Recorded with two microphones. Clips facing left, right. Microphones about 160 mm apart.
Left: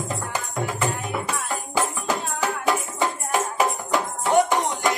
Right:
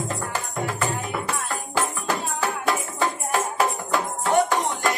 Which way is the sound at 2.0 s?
20° left (ahead or behind).